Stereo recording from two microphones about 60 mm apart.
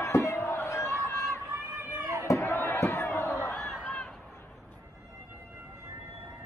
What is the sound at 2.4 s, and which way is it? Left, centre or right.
Crowd, left.